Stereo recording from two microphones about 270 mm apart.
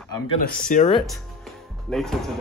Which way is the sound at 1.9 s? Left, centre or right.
Centre.